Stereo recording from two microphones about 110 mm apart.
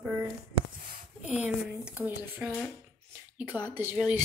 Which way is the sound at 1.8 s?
15° right (ahead or behind).